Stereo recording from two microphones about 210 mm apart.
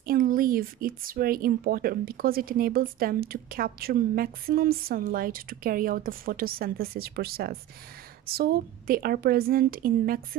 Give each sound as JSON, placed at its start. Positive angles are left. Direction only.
{"t": 0.0, "sound": "speech", "side_deg": -40}